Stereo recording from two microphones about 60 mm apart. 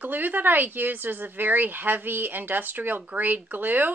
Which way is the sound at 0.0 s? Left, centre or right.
Right.